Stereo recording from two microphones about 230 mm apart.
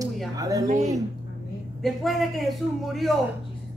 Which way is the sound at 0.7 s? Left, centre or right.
Right.